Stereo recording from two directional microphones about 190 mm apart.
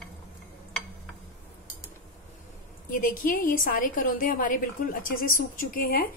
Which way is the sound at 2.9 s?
45° left (ahead or behind).